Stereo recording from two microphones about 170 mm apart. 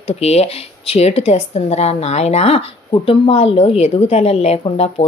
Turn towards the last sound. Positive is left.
turn(degrees=35)  # may be behind; listen again after turning